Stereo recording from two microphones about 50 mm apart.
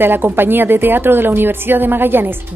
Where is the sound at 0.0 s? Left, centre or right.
Right.